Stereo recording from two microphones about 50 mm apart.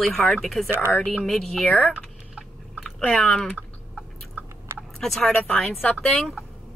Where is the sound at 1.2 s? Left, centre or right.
Centre.